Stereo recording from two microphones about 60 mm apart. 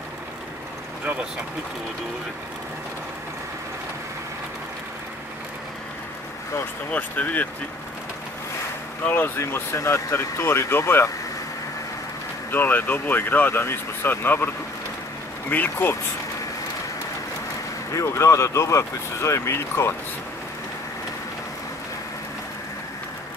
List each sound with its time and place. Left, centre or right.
6.9 s speech: left
9.0 s speech: left
9.4 s speech: left
12.4 s speech: left
15.5 s speech: left
17.9 s speech: left